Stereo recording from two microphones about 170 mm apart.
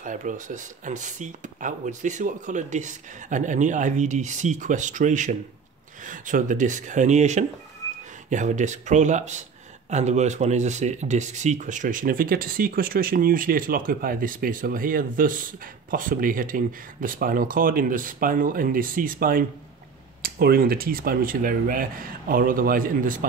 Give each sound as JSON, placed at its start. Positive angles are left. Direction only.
{"t": 0.0, "sound": "speech", "side_deg": -50}